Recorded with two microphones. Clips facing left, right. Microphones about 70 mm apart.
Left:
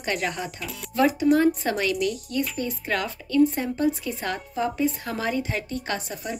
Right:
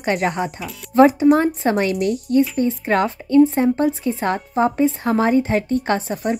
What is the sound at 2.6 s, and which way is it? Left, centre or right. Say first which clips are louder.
A woman's voice: right 9 dB; right.